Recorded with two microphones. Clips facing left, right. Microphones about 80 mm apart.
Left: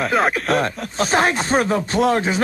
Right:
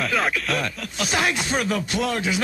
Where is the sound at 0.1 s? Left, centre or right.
Left.